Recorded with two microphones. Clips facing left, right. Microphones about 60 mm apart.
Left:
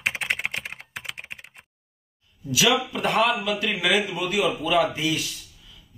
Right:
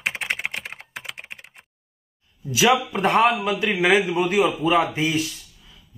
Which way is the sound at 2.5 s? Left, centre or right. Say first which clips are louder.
Right 3 dB; right.